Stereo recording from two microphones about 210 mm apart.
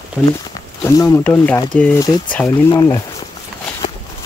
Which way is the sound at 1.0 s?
15° left (ahead or behind).